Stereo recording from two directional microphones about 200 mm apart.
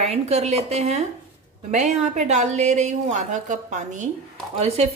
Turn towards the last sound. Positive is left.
turn(degrees=-30)  # may be behind; listen again after turning